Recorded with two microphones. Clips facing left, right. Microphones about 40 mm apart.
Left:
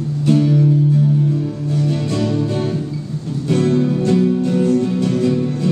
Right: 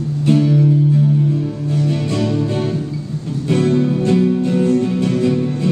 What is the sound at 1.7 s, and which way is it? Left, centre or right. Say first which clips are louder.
Music: right 1 dB; centre.